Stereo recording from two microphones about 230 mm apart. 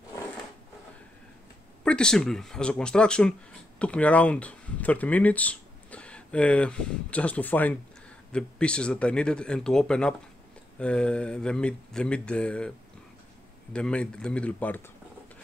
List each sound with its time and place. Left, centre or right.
1.9 s speech: centre
13.7 s speech: centre